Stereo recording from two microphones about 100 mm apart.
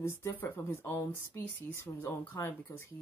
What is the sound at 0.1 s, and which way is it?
Speech, 25° left (ahead or behind).